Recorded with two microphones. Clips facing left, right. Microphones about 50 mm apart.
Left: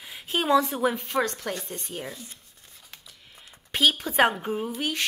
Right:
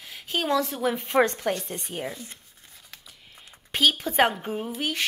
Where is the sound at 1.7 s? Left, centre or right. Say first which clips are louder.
Right 3 dB; centre.